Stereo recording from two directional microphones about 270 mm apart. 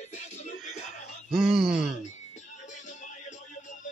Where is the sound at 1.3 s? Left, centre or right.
Centre.